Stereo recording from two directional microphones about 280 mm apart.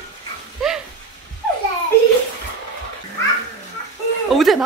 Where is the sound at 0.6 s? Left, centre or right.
Centre.